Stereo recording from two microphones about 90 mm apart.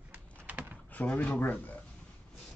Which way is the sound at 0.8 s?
20° left (ahead or behind).